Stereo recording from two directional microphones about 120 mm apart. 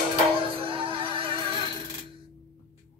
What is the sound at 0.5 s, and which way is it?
Music, 45° right (ahead or behind).